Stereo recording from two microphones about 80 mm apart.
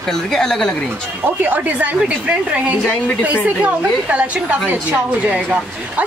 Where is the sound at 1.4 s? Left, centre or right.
Right.